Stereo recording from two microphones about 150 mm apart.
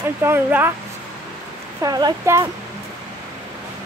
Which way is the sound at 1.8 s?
25° right (ahead or behind).